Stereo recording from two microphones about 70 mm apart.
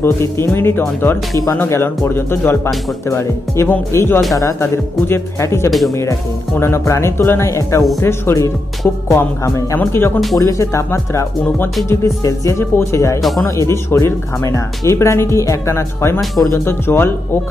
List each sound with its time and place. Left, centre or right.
0.0 s speech: left
5.7 s speech: centre
6.6 s speech: left
10.4 s speech: left
13.2 s speech: centre
13.7 s speech: left
16.6 s speech: left